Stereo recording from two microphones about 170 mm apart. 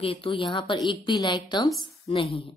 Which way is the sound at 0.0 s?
35° left (ahead or behind).